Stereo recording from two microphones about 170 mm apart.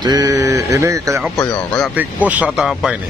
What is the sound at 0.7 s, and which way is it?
Speech, 20° right (ahead or behind).